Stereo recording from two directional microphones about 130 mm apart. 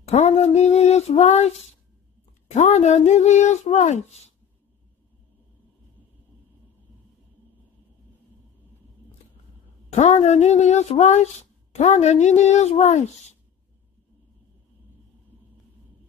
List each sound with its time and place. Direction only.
0.0 s female singing: 55° left (ahead or behind)
2.5 s speech: 65° left (ahead or behind)
9.8 s speech: 60° left (ahead or behind)